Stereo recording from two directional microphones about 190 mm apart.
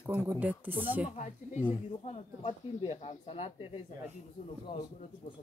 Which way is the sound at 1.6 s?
30° left (ahead or behind).